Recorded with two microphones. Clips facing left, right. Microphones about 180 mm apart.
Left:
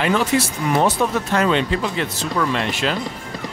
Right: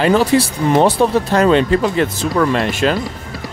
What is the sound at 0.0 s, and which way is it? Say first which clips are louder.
Speech: right 6 dB; 35° right (ahead or behind).